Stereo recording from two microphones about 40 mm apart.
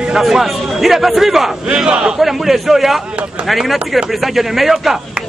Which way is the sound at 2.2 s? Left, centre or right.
Centre.